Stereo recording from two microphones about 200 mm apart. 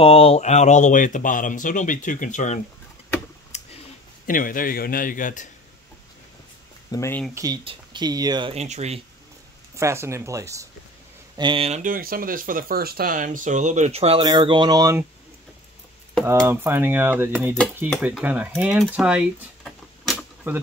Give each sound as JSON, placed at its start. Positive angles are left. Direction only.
{"t": 0.0, "sound": "speech", "side_deg": 30}
{"t": 3.5, "sound": "a sound", "side_deg": 35}
{"t": 4.3, "sound": "a man's voice", "side_deg": 45}
{"t": 6.9, "sound": "speech", "side_deg": 15}
{"t": 7.3, "sound": "speech", "side_deg": -20}
{"t": 9.8, "sound": "speech", "side_deg": -15}
{"t": 16.4, "sound": "speech", "side_deg": -10}